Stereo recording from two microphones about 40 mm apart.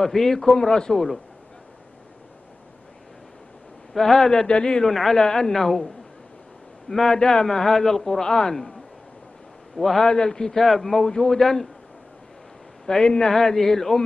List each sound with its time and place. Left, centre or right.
0.0 s a man's voice: centre
0.9 s a man's voice: centre
3.9 s a man's voice: centre
4.8 s a man's voice: centre
9.8 s a man's voice: centre
12.8 s a man's voice: centre